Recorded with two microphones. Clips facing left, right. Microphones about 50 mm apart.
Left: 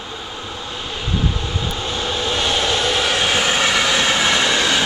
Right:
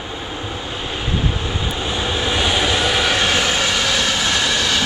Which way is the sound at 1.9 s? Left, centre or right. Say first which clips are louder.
Right 1 dB; centre.